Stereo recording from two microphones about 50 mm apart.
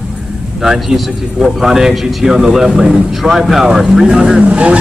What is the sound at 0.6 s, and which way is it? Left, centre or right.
Speech, centre.